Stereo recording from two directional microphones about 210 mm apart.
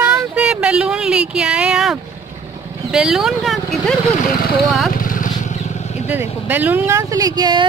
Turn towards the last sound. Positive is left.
turn(degrees=-20)  # may be behind; listen again after turning